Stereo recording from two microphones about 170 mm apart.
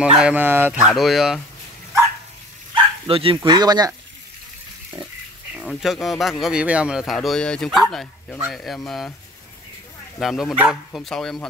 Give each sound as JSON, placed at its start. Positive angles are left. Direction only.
{"t": 0.0, "sound": "speech", "side_deg": -10}
{"t": 2.7, "sound": "bow-wow", "side_deg": -35}
{"t": 3.4, "sound": "speech", "side_deg": -25}
{"t": 5.5, "sound": "speech", "side_deg": -5}
{"t": 10.1, "sound": "speech", "side_deg": 0}